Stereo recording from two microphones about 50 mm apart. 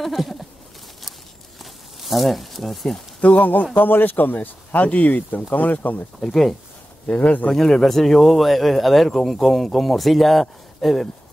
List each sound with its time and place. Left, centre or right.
0.0 s a sound: centre
1.6 s a sound: centre
3.2 s speech: left
6.2 s speech: centre
7.2 s speech: left
7.5 s speech: centre